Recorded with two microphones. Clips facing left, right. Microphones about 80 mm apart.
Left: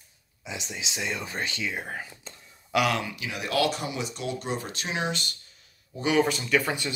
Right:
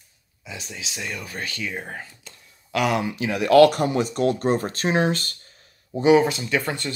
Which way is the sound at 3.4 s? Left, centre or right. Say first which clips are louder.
Right 12 dB; right.